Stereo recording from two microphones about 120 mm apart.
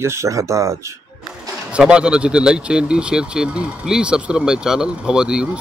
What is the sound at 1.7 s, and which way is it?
Speech, 5° right (ahead or behind).